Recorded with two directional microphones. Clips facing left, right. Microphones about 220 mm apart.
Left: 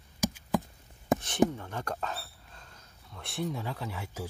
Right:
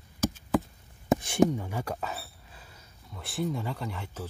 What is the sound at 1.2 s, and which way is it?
Speech, 10° right (ahead or behind).